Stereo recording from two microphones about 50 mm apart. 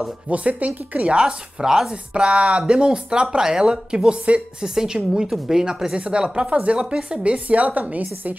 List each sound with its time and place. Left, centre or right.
0.3 s a woman's voice: right
1.1 s speech: centre
2.1 s a woman's voice: right